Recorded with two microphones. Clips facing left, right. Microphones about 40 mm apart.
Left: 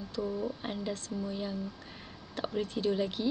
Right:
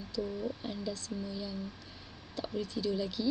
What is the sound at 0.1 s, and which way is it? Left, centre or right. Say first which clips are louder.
Speech: left 2 dB; left.